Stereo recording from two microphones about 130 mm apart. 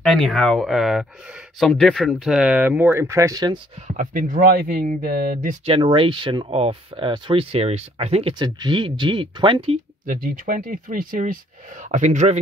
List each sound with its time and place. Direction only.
0.0 s speech: centre (ahead or behind); by 3.6 s 35° right (ahead or behind)
3.8 s speech: 70° right (ahead or behind); by 5.6 s 90° right
5.7 s speech: 40° right (ahead or behind)
10.0 s speech: 90° right
11.8 s speech: 70° right (ahead or behind)